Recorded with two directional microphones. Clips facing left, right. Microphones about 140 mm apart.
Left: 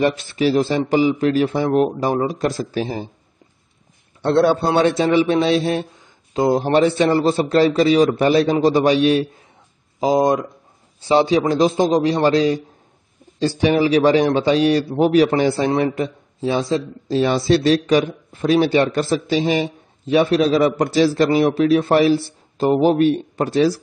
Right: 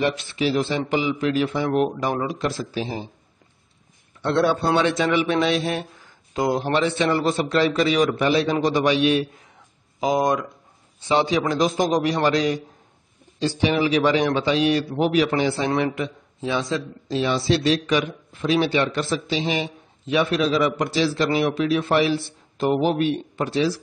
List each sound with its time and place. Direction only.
0.0 s a man's voice: 45° left (ahead or behind)
4.2 s a man's voice: 35° left (ahead or behind)
13.4 s a man's voice: 45° left (ahead or behind)